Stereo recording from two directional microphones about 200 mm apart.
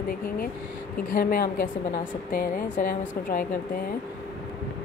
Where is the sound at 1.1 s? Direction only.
50° left (ahead or behind).